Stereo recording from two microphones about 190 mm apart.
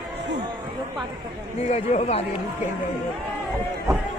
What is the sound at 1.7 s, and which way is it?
Speech, 35° left (ahead or behind).